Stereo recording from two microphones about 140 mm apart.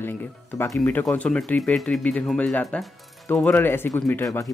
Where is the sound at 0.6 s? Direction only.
15° left (ahead or behind).